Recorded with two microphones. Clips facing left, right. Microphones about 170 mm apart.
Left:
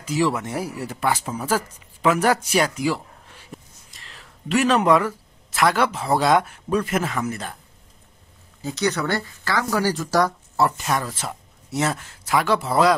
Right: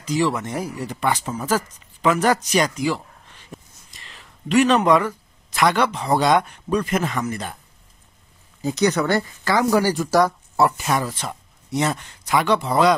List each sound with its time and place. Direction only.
0.0 s speech: 10° left (ahead or behind)
8.6 s a woman's voice: 15° right (ahead or behind); by 12.9 s centre (ahead or behind)